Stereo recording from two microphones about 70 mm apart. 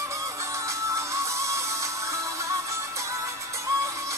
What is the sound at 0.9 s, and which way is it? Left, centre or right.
Music, right.